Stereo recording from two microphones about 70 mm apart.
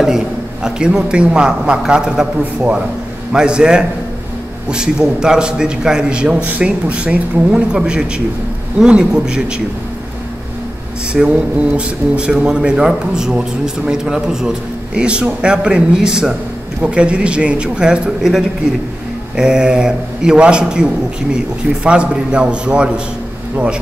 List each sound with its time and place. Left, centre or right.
0.7 s a man's voice: centre
11.2 s a man's voice: centre